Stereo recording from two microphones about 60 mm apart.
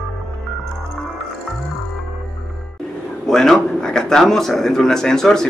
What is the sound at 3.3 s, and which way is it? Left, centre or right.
A man's voice, centre.